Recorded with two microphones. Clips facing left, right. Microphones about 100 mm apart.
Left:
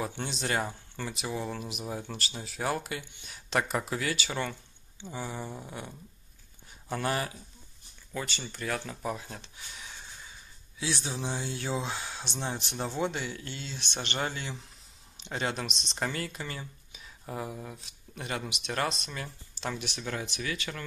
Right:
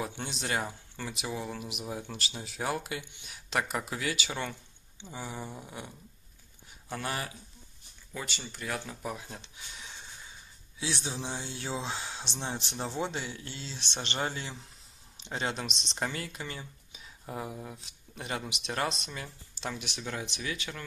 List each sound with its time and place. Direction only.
0.0 s speech: 15° right (ahead or behind)
6.9 s speech: centre (ahead or behind)
10.8 s speech: 25° right (ahead or behind)
11.1 s speech: 5° left (ahead or behind)
11.4 s speech: 25° right (ahead or behind)
12.7 s speech: 5° left (ahead or behind)
13.0 s speech: 25° right (ahead or behind)
15.2 s speech: 20° right (ahead or behind)
19.0 s speech: 15° right (ahead or behind)